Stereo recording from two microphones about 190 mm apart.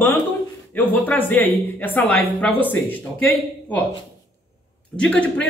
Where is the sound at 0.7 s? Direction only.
10° left (ahead or behind).